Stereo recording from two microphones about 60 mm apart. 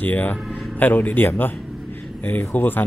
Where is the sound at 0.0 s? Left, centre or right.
Left.